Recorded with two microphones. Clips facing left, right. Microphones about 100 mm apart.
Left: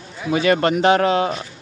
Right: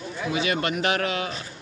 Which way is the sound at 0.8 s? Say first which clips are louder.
Left 10 dB; 30° left (ahead or behind).